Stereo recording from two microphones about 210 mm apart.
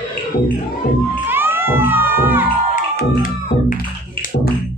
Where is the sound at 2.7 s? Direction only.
40° left (ahead or behind).